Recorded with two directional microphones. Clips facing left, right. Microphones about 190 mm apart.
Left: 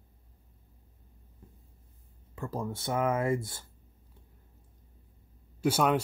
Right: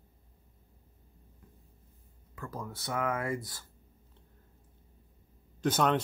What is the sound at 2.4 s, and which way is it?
Speech, 25° left (ahead or behind).